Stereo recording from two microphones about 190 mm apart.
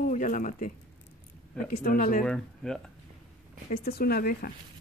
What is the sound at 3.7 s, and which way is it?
Speech, 55° left (ahead or behind).